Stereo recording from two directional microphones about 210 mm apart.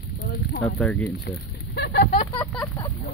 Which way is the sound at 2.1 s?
25° left (ahead or behind).